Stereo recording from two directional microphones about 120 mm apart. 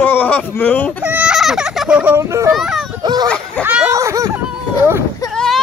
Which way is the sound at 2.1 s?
25° right (ahead or behind).